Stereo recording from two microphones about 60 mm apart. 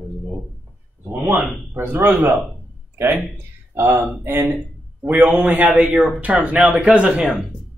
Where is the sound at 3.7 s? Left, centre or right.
Right; by 7.2 s centre.